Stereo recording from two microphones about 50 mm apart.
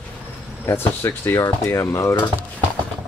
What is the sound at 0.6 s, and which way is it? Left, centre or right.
Speech, left.